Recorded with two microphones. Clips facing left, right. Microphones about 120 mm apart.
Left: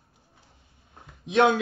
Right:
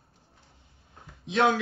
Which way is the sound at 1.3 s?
25° left (ahead or behind).